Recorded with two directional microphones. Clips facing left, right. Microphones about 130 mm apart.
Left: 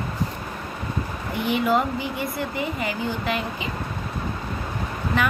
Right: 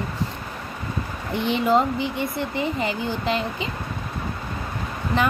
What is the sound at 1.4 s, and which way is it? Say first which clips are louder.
A woman's voice: right 2 dB; 25° right (ahead or behind).